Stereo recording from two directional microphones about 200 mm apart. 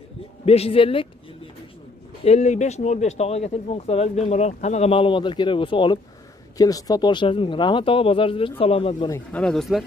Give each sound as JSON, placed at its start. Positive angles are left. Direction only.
{"t": 0.5, "sound": "speech", "side_deg": 30}
{"t": 2.2, "sound": "speech", "side_deg": 35}
{"t": 9.1, "sound": "speech", "side_deg": 5}